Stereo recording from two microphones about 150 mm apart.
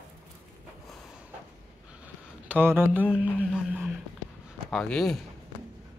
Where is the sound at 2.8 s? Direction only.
10° right (ahead or behind).